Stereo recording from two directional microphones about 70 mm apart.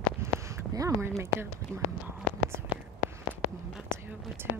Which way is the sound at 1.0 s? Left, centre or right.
Right.